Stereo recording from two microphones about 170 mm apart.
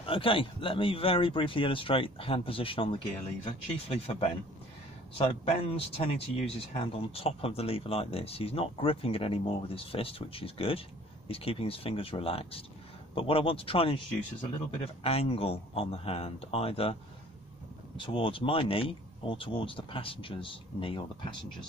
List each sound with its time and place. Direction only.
0.0 s speech: 30° left (ahead or behind)
15.0 s speech: 35° left (ahead or behind)
17.9 s speech: 30° left (ahead or behind)